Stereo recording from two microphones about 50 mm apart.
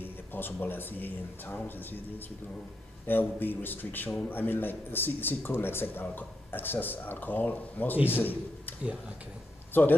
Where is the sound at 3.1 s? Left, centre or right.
Left.